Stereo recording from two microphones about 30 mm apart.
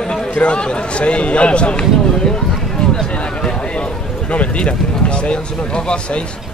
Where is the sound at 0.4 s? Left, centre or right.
Left.